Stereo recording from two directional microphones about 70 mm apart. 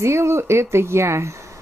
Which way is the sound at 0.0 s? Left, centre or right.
Right.